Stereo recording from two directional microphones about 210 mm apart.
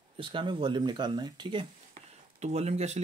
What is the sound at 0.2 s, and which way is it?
Speech, 25° right (ahead or behind).